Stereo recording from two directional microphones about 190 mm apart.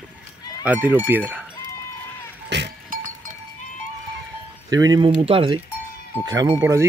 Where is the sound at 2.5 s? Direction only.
65° right (ahead or behind).